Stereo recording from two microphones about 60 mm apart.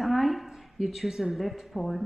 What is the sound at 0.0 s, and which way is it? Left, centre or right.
A woman's voice, centre.